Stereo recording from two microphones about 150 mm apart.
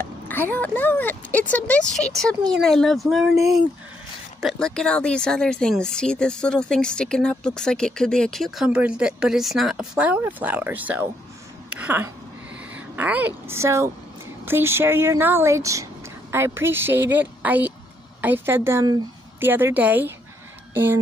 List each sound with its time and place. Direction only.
0.0 s speech: 15° left (ahead or behind)
4.4 s speech: centre (ahead or behind)